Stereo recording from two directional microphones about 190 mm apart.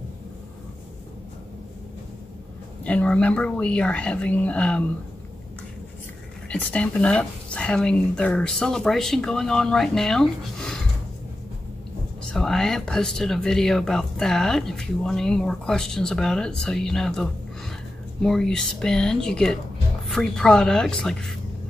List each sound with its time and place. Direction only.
2.8 s speech: 5° left (ahead or behind)
6.5 s speech: 5° left (ahead or behind)
12.3 s speech: centre (ahead or behind)